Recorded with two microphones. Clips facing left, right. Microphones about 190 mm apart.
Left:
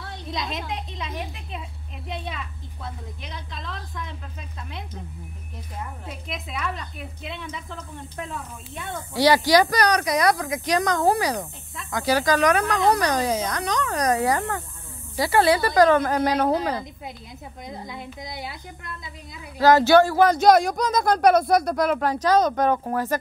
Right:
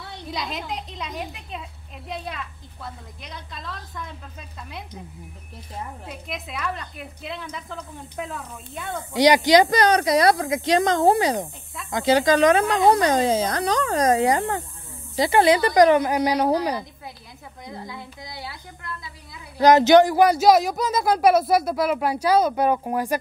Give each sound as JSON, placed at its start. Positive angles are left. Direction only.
{"t": 0.3, "sound": "a woman's voice", "side_deg": 0}
{"t": 6.0, "sound": "a woman's voice", "side_deg": 0}
{"t": 9.1, "sound": "speech", "side_deg": -20}
{"t": 17.6, "sound": "a woman's voice", "side_deg": 20}
{"t": 19.6, "sound": "speech", "side_deg": -20}